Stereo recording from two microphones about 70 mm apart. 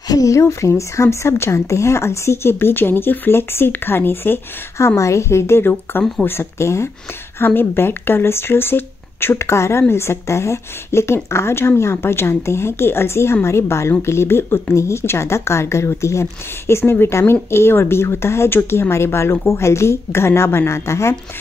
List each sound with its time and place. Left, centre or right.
0.1 s speech: left